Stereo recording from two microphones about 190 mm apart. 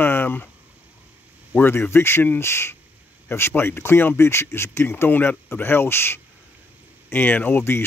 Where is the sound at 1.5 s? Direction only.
10° left (ahead or behind).